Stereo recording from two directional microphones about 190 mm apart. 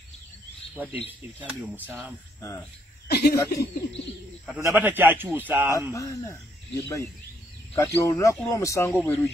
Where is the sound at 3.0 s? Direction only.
55° left (ahead or behind).